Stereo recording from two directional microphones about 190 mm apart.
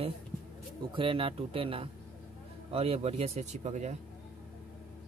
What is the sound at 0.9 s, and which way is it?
Speech, 30° right (ahead or behind).